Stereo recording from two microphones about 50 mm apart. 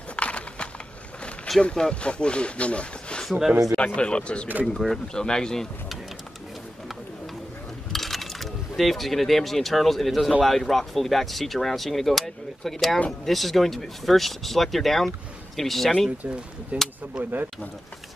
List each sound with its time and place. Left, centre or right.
0.1 s a sound: left
1.6 s speech: centre
3.3 s speech: centre
3.7 s speech: left
4.7 s speech: centre
5.1 s speech: centre
7.9 s speech: centre
16.7 s speech: right
17.2 s speech: right